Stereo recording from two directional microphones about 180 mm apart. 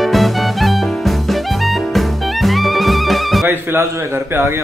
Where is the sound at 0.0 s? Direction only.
Centre (ahead or behind).